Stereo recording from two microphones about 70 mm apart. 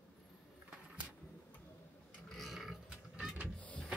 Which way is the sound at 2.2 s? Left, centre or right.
Centre.